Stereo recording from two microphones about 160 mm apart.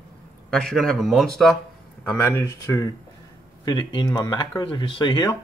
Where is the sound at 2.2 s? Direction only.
20° left (ahead or behind).